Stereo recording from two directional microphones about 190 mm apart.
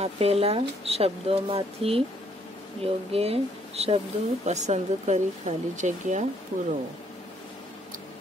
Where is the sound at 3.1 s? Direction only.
30° right (ahead or behind).